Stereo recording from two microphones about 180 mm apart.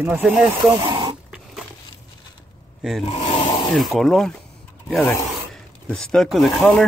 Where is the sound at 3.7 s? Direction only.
Centre (ahead or behind).